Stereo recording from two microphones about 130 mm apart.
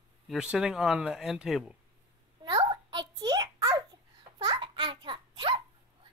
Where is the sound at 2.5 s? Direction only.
35° right (ahead or behind).